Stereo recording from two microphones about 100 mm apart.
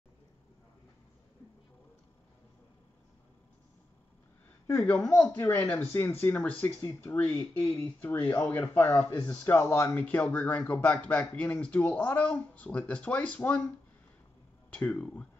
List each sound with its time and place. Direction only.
4.9 s speech: 5° left (ahead or behind)
5.3 s speech: 20° left (ahead or behind)
14.7 s speech: 10° left (ahead or behind)